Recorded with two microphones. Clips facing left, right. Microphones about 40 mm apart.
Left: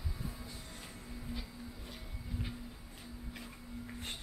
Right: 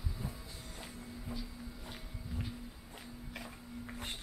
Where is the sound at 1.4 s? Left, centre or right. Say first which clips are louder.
Right 1 dB; centre.